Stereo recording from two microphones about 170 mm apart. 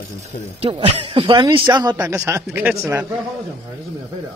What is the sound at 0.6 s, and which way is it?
A man's voice, 35° right (ahead or behind).